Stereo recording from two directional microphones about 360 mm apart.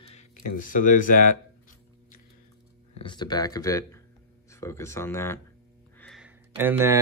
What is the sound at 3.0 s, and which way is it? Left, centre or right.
Speech, centre.